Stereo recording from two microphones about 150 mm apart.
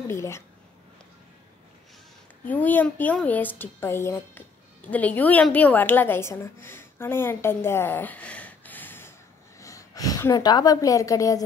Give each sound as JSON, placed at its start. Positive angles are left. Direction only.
{"t": 0.1, "sound": "a woman's voice", "side_deg": 20}
{"t": 2.4, "sound": "a woman's voice", "side_deg": 10}